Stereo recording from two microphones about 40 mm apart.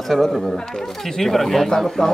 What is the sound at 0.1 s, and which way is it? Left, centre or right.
Speech, centre.